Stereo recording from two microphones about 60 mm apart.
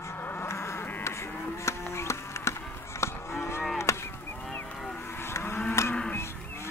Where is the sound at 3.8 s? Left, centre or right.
Left.